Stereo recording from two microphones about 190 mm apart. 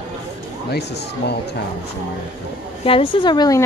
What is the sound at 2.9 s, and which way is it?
Speech, 30° left (ahead or behind).